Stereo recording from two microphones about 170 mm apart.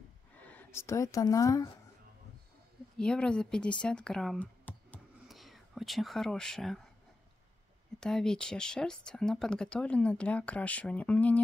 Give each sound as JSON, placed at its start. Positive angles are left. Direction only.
{"t": 0.4, "sound": "speech", "side_deg": 10}
{"t": 3.0, "sound": "speech", "side_deg": 5}
{"t": 3.8, "sound": "a sound", "side_deg": 5}
{"t": 8.0, "sound": "speech", "side_deg": 5}